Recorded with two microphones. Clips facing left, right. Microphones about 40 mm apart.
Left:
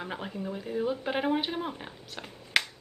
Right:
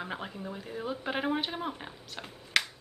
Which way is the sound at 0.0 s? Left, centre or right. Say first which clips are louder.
Left 2 dB; centre.